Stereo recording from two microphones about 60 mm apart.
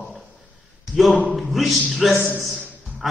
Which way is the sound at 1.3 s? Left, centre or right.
Centre.